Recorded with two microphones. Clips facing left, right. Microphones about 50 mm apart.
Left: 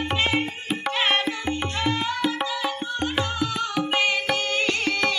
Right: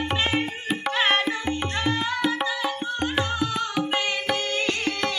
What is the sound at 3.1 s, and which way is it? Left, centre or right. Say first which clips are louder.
Music: right 1 dB; centre.